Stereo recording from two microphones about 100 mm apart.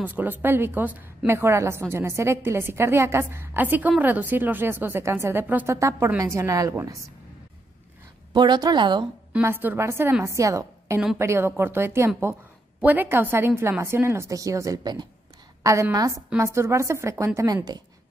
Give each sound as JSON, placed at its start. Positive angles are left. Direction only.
{"t": 0.0, "sound": "a woman's voice", "side_deg": -20}
{"t": 5.8, "sound": "a woman's voice", "side_deg": -30}
{"t": 8.3, "sound": "a woman's voice", "side_deg": -45}
{"t": 9.4, "sound": "a woman's voice", "side_deg": -20}
{"t": 15.6, "sound": "a woman's voice", "side_deg": -30}